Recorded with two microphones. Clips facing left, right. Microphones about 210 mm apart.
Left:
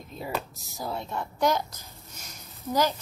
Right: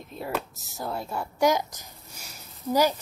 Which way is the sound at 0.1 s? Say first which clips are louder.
Right 2 dB; 5° right (ahead or behind).